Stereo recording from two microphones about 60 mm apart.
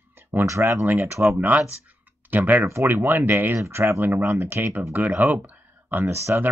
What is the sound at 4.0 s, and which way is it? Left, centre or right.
Speech, right.